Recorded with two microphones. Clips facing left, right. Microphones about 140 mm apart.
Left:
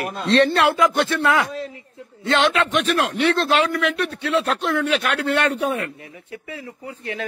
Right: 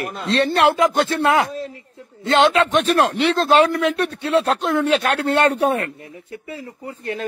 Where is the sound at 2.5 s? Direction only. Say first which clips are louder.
Right 4 dB; 35° right (ahead or behind).